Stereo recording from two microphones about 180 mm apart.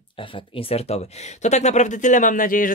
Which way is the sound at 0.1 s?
30° left (ahead or behind).